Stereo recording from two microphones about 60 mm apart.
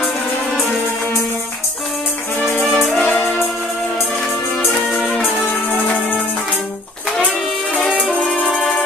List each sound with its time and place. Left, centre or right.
2.7 s music: centre
3.2 s music: left
4.8 s music: centre
8.2 s music: centre